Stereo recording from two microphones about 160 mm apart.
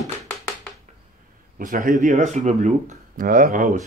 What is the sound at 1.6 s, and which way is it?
Speech, 60° right (ahead or behind).